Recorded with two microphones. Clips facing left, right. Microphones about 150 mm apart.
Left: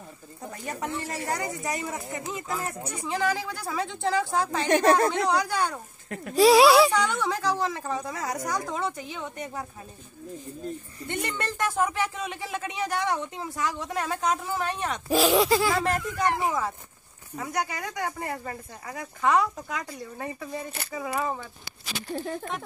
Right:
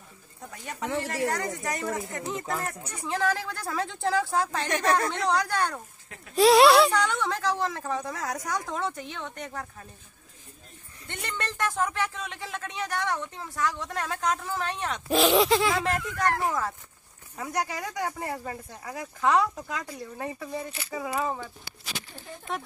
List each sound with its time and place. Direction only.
0.5 s speech: 5° left (ahead or behind)
4.6 s speech: 35° left (ahead or behind)
5.1 s speech: 5° left (ahead or behind)
6.0 s speech: 55° left (ahead or behind)
6.3 s speech: centre (ahead or behind)
11.1 s speech: 5° left (ahead or behind)